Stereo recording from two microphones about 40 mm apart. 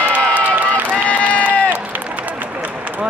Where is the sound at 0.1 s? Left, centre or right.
Right.